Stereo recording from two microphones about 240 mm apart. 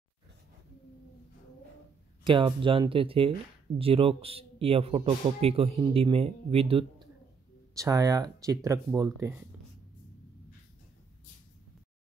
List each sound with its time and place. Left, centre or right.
2.2 s speech: centre